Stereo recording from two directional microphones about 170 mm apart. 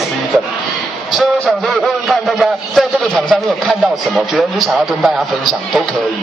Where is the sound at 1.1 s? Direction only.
Centre (ahead or behind).